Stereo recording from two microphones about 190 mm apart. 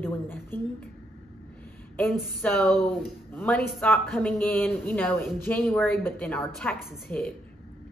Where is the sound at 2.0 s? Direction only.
Centre (ahead or behind).